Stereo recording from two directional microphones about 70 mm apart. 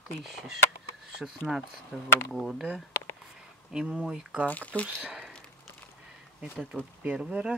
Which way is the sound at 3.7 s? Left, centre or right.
Centre.